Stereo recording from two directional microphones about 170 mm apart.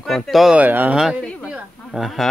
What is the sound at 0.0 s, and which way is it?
Speech, centre (ahead or behind).